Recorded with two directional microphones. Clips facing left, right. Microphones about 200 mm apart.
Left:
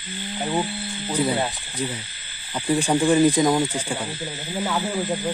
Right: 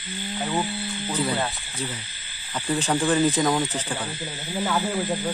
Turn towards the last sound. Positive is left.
turn(degrees=5)  # may be behind; listen again after turning